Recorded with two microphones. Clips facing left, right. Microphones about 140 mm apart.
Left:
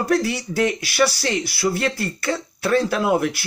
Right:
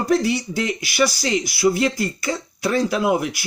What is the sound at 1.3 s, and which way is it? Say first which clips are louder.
Speech: right 3 dB; 5° right (ahead or behind).